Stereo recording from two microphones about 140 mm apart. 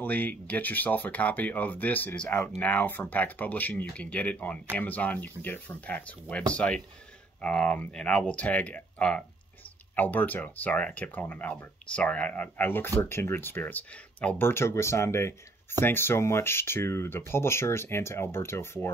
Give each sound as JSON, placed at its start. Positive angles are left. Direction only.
{"t": 0.0, "sound": "speech", "side_deg": 10}